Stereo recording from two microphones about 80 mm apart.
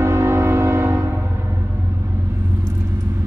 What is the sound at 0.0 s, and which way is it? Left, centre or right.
Music, right.